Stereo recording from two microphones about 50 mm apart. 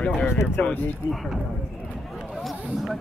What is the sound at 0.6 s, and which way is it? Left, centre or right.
Speech, left.